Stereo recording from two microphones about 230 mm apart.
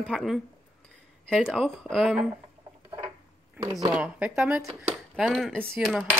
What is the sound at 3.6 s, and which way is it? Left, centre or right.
Speech, centre.